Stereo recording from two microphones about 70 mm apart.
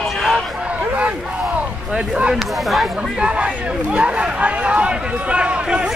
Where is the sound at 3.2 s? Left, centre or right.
Centre.